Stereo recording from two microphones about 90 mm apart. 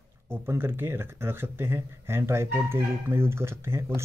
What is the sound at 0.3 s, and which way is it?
Speech, 25° right (ahead or behind).